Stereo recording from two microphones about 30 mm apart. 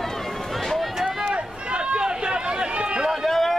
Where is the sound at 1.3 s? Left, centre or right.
Right.